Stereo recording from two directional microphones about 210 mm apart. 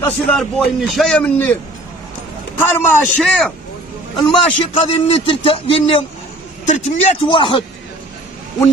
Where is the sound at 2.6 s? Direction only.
10° left (ahead or behind).